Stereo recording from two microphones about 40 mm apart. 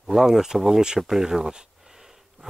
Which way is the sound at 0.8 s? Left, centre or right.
Centre.